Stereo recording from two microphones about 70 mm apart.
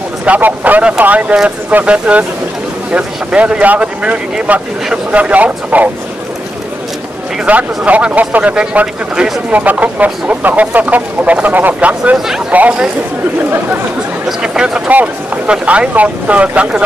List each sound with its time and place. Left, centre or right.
0.2 s speech: centre
7.4 s speech: right
14.2 s speech: centre
14.9 s speech: right